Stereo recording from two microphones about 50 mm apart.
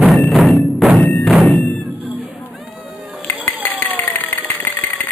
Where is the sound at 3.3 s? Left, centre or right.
Left.